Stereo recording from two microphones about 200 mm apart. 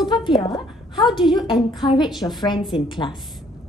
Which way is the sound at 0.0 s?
20° left (ahead or behind).